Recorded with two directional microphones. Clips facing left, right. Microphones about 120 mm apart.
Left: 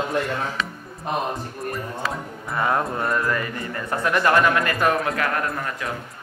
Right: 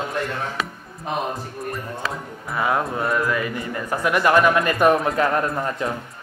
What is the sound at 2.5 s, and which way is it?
A man's voice, 5° right (ahead or behind).